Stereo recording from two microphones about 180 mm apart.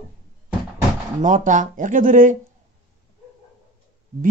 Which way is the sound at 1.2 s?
45° right (ahead or behind).